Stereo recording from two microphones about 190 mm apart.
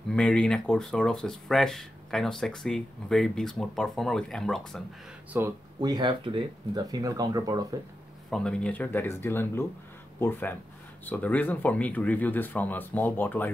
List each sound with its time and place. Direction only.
0.1 s speech: 5° left (ahead or behind)
5.3 s speech: 10° right (ahead or behind)
5.8 s speech: 20° right (ahead or behind)
8.3 s speech: 5° left (ahead or behind)